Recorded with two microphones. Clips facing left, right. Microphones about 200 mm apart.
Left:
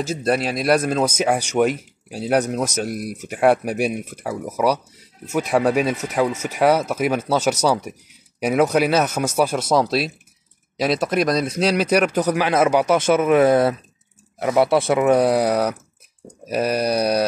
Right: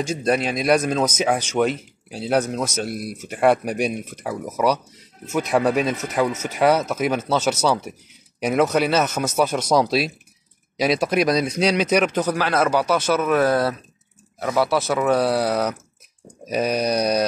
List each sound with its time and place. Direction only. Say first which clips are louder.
0.0 s speech: even; 5° left (ahead or behind)